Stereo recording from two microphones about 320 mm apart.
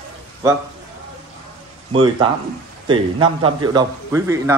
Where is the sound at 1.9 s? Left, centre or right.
Centre.